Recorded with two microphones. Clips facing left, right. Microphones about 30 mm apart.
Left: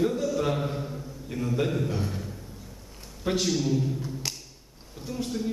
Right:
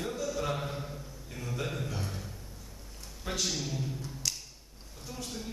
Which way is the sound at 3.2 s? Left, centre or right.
Left.